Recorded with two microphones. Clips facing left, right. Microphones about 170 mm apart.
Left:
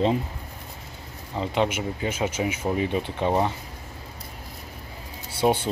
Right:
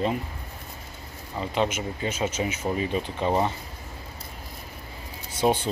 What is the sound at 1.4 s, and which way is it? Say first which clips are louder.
Speech: left 2 dB; 15° left (ahead or behind).